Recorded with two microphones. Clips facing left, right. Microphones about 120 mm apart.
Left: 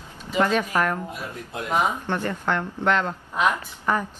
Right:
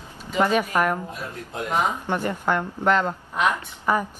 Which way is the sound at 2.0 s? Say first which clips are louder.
Right 1 dB; 10° right (ahead or behind).